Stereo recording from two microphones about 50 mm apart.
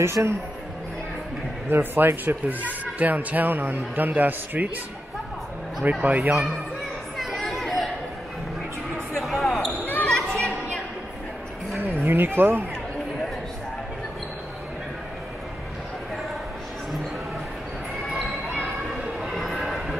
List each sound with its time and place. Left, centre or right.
0.0 s speech: right
1.7 s speech: right
6.0 s speech: right
7.3 s chatter: centre
9.2 s basketball bounce: centre
10.0 s a sound: centre
11.9 s speech: right
19.3 s a sound: centre